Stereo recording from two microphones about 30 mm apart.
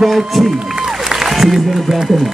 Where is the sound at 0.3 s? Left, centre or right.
Centre.